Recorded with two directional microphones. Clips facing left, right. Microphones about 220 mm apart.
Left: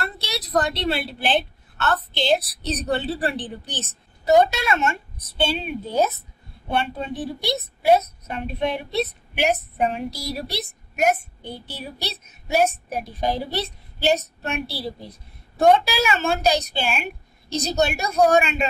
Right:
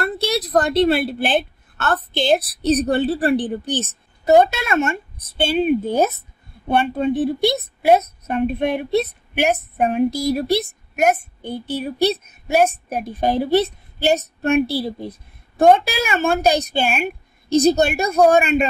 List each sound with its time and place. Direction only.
0.0 s a woman's voice: 50° right (ahead or behind)